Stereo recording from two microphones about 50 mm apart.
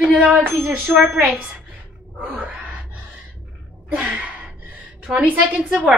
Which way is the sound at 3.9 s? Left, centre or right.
Right.